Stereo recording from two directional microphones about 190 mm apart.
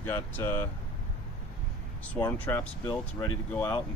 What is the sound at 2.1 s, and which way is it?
Speech, 10° left (ahead or behind).